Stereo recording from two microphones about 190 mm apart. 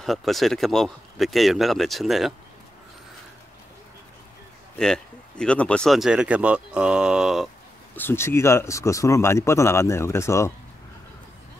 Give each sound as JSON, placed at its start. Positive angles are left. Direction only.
{"t": 0.0, "sound": "speech", "side_deg": 0}
{"t": 4.7, "sound": "speech", "side_deg": 5}
{"t": 7.9, "sound": "speech", "side_deg": 10}